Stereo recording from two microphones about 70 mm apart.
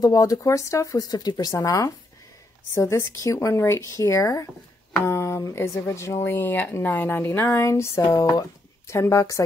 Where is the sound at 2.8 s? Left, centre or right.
Left.